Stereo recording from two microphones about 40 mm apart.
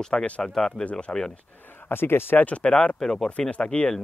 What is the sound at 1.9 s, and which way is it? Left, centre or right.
Speech, left.